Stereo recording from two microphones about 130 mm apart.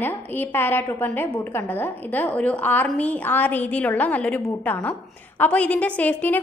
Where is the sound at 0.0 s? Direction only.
15° left (ahead or behind).